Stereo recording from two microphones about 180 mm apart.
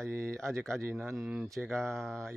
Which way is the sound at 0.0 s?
15° right (ahead or behind).